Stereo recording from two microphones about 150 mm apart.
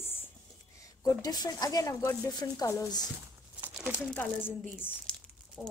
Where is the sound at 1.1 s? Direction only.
25° left (ahead or behind).